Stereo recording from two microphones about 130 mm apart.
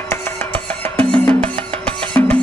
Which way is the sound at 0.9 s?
10° left (ahead or behind).